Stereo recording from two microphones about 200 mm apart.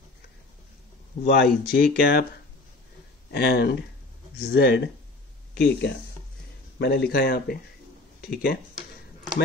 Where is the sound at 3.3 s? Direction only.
55° left (ahead or behind).